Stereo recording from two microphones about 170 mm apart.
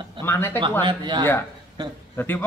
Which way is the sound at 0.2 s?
15° left (ahead or behind).